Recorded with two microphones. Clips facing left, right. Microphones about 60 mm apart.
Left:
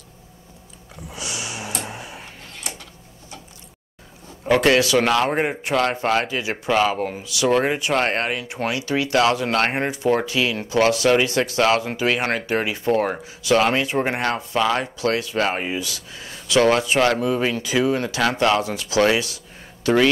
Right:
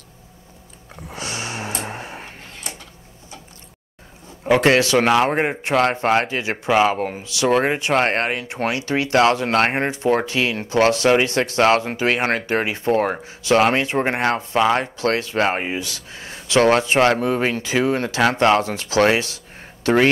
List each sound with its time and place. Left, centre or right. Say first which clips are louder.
0.9 s a sound: right 2 dB; right
4.6 s speech: right 1 dB; right
6.9 s speech: right 2 dB; right
14.8 s speech: right 1 dB; right